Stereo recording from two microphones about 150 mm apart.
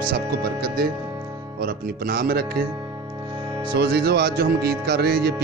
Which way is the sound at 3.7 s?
90° right.